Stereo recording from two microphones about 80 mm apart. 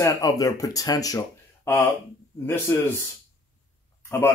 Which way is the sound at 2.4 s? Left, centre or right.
Left.